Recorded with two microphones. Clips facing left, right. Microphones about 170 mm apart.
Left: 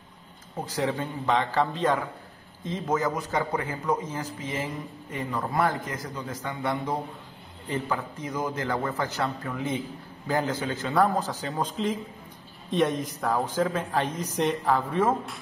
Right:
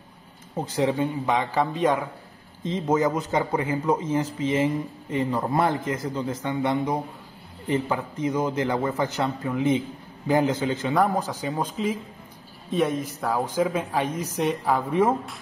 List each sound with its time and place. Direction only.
0.7 s a man's voice: 20° right (ahead or behind)